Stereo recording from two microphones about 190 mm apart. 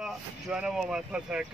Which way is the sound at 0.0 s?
5° right (ahead or behind).